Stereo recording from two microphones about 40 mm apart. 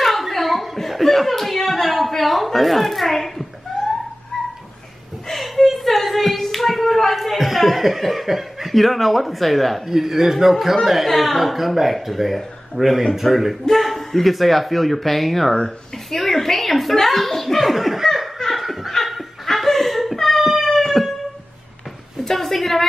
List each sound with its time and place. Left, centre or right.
0.0 s speech: centre
4.3 s dog: left
5.3 s hands: centre
7.2 s speech: centre
9.8 s a man's voice: centre
16.1 s chuckle: centre
18.6 s laughter: centre
20.6 s music: centre
22.2 s a sound: centre